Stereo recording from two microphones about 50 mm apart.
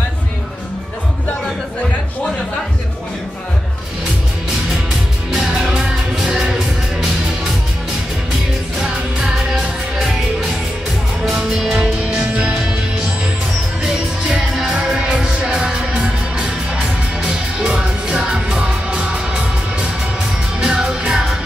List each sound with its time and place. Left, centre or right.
5.6 s music: centre
8.7 s music: centre
11.3 s music: centre
12.4 s music: right
14.7 s music: centre